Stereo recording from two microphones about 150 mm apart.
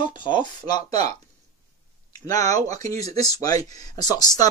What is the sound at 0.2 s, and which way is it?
Speech, 30° left (ahead or behind).